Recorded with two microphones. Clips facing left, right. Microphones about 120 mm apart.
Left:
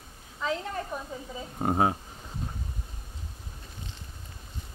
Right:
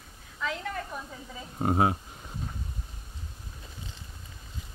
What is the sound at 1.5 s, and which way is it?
Speech, 35° left (ahead or behind).